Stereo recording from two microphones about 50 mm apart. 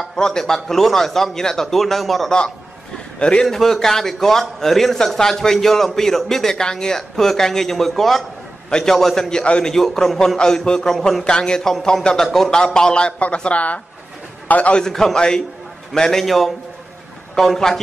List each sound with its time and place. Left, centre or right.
0.0 s a man's voice: centre
3.2 s a man's voice: left
3.4 s a man's voice: centre; by 14.8 s left
14.8 s a man's voice: centre